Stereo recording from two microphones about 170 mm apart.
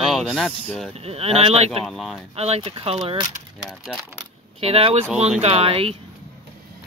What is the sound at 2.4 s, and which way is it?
Speech, 35° right (ahead or behind).